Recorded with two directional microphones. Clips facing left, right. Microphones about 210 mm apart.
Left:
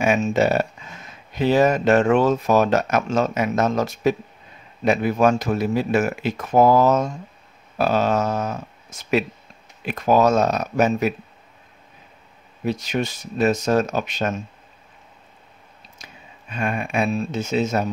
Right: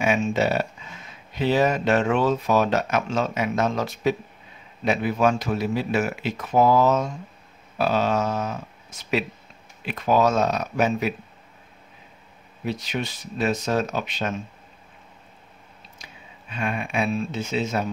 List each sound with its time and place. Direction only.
0.0 s speech: 45° left (ahead or behind)
12.6 s speech: 45° left (ahead or behind)
16.0 s speech: 45° left (ahead or behind)